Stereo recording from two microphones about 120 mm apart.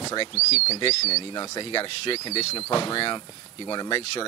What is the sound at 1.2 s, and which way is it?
Speech, 40° left (ahead or behind).